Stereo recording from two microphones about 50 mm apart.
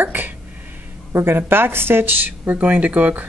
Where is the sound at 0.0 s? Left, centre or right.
Right.